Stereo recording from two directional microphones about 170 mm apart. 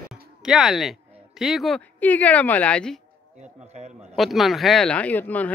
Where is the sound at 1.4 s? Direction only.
Centre (ahead or behind).